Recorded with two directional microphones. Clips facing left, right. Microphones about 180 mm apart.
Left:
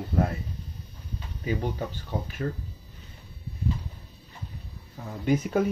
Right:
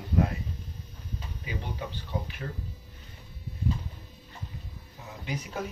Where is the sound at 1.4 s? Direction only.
45° left (ahead or behind).